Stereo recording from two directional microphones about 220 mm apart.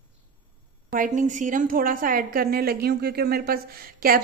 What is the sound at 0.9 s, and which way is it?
A woman's voice, 35° right (ahead or behind).